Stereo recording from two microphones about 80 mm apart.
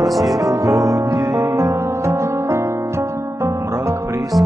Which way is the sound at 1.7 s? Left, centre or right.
Right.